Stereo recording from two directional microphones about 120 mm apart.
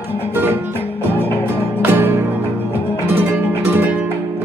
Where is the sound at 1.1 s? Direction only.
15° left (ahead or behind).